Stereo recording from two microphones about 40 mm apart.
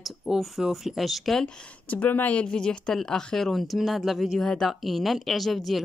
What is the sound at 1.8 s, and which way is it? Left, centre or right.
Speech, left.